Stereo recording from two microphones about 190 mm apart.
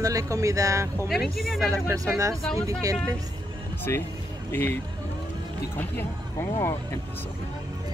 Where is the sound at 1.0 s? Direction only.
Centre (ahead or behind).